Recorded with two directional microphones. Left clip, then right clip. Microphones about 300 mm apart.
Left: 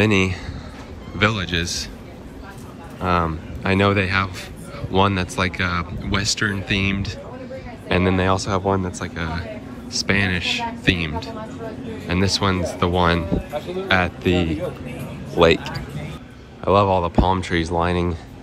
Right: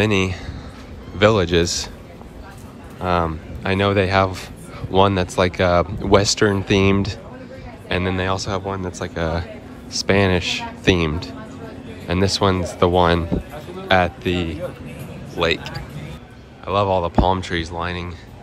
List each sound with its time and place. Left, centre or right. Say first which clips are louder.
0.0 s speech: left 1 dB; centre
3.0 s speech: even; centre
7.9 s speech: left 2 dB; centre